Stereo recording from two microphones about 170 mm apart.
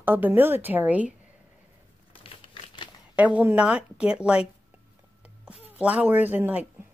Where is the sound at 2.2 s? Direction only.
30° left (ahead or behind).